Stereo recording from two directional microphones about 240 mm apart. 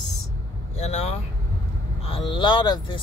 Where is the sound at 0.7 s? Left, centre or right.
Left.